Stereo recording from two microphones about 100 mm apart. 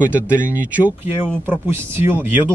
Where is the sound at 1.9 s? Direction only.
20° right (ahead or behind).